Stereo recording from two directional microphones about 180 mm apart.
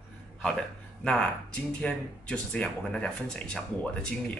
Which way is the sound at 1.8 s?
5° left (ahead or behind).